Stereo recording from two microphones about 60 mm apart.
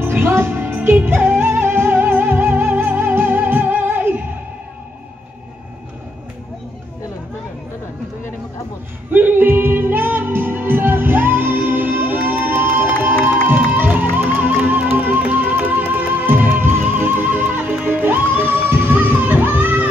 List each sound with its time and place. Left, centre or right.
0.0 s music: right
9.1 s music: right